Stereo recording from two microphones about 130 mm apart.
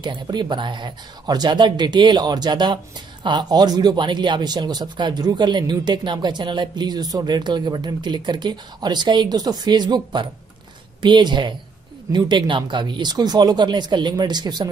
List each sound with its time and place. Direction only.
0.0 s speech: 35° right (ahead or behind)